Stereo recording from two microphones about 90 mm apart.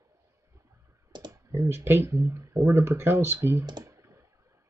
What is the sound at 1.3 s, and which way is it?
Speech, 30° right (ahead or behind).